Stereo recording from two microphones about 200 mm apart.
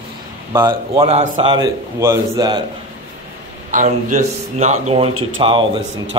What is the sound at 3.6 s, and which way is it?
A man's voice, 40° right (ahead or behind).